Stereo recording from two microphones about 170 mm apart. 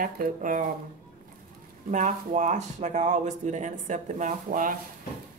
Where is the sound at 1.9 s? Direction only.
45° right (ahead or behind).